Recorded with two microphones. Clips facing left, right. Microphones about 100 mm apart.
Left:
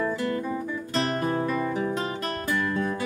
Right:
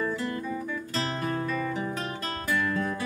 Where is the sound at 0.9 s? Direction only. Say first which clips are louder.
Left 5 dB; 30° left (ahead or behind).